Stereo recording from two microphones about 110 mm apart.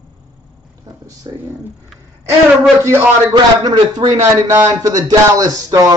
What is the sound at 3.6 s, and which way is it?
Speech, 40° right (ahead or behind).